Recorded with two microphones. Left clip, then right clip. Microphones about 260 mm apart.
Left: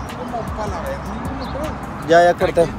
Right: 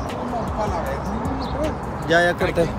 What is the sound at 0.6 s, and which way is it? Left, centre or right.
Speech, right.